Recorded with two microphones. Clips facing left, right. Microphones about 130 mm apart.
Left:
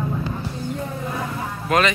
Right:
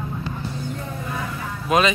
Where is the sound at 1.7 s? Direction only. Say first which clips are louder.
Even; 15° right (ahead or behind).